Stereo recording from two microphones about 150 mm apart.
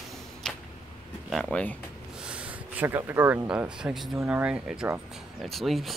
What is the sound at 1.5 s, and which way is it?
Speech, 10° left (ahead or behind).